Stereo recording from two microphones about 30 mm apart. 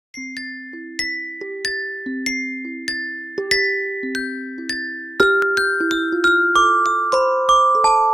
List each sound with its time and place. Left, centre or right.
1.1 s glockenspiel: centre
1.8 s glockenspiel: centre
3.4 s glockenspiel: centre
4.1 s glockenspiel: centre
4.7 s glockenspiel: centre